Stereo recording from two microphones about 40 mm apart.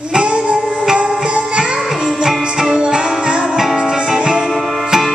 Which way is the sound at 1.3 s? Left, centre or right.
Right.